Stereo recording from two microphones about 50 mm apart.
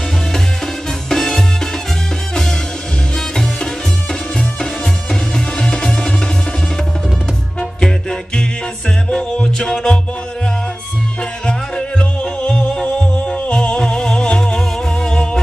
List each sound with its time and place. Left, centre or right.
1.1 s music: centre
5.3 s music: centre
7.8 s music: centre
11.4 s music: centre